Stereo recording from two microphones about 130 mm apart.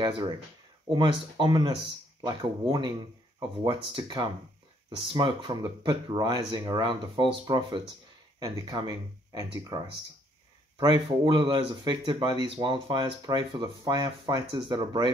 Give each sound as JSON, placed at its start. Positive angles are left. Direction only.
{"t": 0.0, "sound": "speech", "side_deg": -35}